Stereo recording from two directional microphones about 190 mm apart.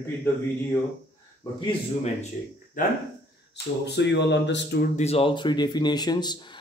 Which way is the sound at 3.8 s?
65° left (ahead or behind).